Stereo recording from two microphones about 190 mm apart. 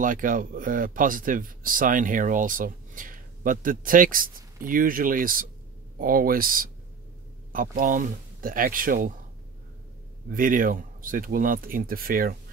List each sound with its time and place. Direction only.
0.0 s speech: 45° right (ahead or behind)
10.3 s speech: 45° right (ahead or behind)